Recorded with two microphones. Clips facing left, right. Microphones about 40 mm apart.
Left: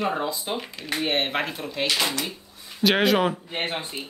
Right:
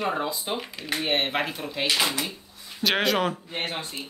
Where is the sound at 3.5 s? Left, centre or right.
Left.